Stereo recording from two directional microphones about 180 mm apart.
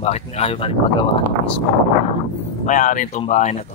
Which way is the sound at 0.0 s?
35° left (ahead or behind).